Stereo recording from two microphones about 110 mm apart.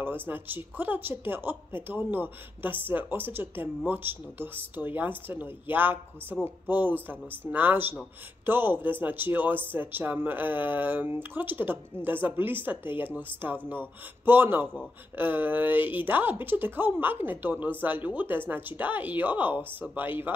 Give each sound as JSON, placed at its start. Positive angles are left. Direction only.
{"t": 0.0, "sound": "speech", "side_deg": -20}